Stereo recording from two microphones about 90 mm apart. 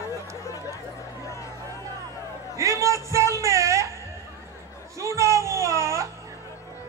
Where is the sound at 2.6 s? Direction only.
35° right (ahead or behind).